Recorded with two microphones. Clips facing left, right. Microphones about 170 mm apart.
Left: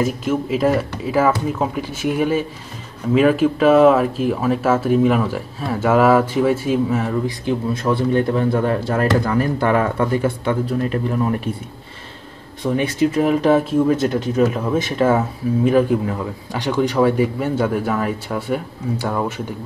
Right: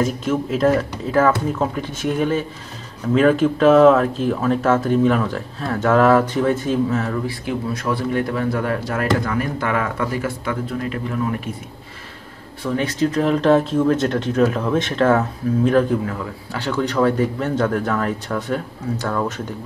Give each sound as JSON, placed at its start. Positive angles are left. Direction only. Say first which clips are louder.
{"t": 0.0, "sound": "speech", "louder": "left 1 dB", "side_deg": 5}
{"t": 7.4, "sound": "speech", "louder": "left 4 dB", "side_deg": 25}
{"t": 12.6, "sound": "speech", "louder": "left 2 dB", "side_deg": 15}